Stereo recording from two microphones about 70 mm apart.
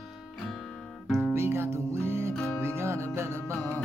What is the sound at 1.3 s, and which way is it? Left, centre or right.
Music, right.